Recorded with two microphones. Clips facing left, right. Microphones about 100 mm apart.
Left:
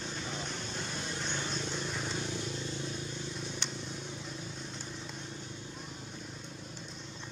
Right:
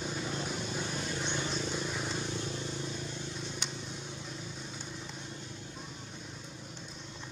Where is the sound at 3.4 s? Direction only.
Centre (ahead or behind).